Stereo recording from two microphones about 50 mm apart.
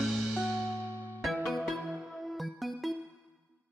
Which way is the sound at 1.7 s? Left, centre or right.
Centre.